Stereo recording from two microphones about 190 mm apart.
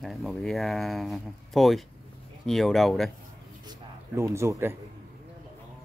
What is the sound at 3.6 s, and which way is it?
A man's voice, 15° right (ahead or behind).